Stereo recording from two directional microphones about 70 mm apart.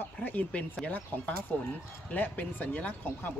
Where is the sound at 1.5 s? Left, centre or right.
Centre.